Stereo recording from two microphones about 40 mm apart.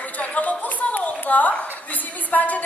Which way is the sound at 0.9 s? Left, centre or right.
Left.